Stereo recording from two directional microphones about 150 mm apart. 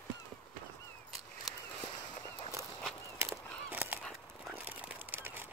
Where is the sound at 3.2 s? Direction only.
15° right (ahead or behind).